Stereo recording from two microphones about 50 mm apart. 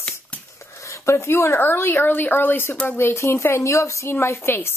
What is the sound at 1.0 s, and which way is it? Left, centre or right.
A woman's voice, left.